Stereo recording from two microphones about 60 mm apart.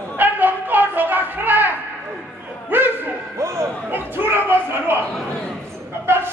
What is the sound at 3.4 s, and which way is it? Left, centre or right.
Speech, right.